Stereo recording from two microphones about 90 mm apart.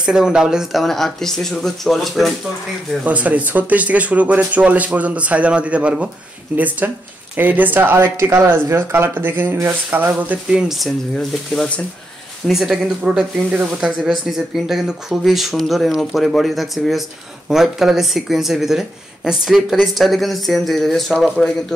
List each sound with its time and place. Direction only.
0.0 s speech: 10° right (ahead or behind)
3.0 s speech: 15° right (ahead or behind); by 11.8 s 10° left (ahead or behind)
12.4 s speech: 5° right (ahead or behind)